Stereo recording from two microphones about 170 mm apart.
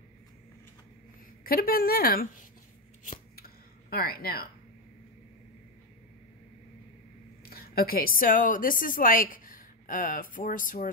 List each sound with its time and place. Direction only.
1.4 s a woman's voice: 60° left (ahead or behind)
3.1 s a sound: 60° left (ahead or behind)
7.4 s a woman's voice: 65° left (ahead or behind)